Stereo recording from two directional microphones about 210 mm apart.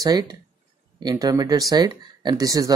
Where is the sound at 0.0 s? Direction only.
20° right (ahead or behind).